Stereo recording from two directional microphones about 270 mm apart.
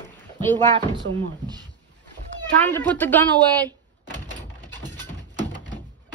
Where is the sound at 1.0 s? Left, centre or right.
Right.